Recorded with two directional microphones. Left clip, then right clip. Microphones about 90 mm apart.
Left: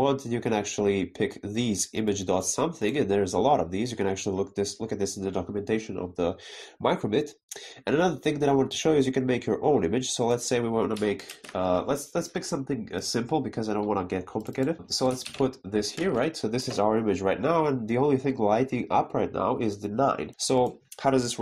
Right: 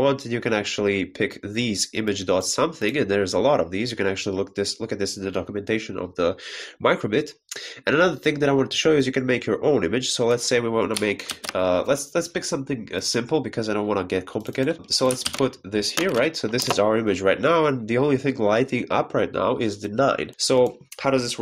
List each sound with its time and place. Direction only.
0.0 s speech: 25° left (ahead or behind)
13.7 s speech: 5° left (ahead or behind)
14.9 s speech: 20° left (ahead or behind)
16.7 s speech: 10° left (ahead or behind)
20.3 s speech: 25° left (ahead or behind)
21.0 s speech: 65° left (ahead or behind)